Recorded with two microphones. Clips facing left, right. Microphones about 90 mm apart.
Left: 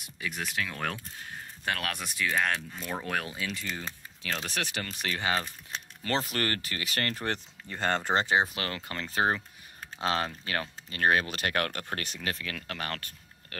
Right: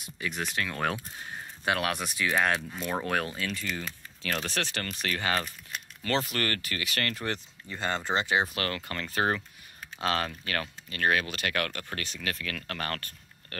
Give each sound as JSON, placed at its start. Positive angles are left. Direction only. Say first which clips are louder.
{"t": 0.0, "sound": "speech", "louder": "right 2 dB", "side_deg": 0}
{"t": 3.3, "sound": "speech", "louder": "right 2 dB", "side_deg": 10}
{"t": 5.7, "sound": "speech", "louder": "right 2 dB", "side_deg": 30}
{"t": 7.2, "sound": "speech", "louder": "left 1 dB", "side_deg": 50}
{"t": 8.4, "sound": "speech", "louder": "even", "side_deg": 20}
{"t": 12.3, "sound": "speech", "louder": "even", "side_deg": 25}
{"t": 12.5, "sound": "speech", "louder": "right 2 dB", "side_deg": 10}